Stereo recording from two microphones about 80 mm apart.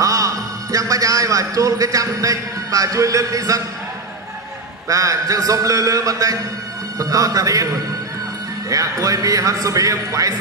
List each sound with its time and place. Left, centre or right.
0.0 s a man's voice: right
4.8 s a man's voice: right
8.6 s a man's voice: right